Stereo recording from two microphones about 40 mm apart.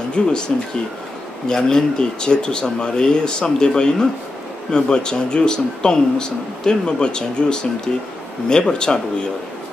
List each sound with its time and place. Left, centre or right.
0.1 s speech: left
1.5 s speech: centre